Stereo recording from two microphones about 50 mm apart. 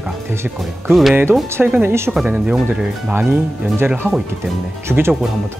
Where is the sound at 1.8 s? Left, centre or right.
Right.